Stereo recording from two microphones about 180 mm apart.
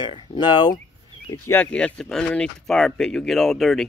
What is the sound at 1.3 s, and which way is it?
Speech, 10° left (ahead or behind).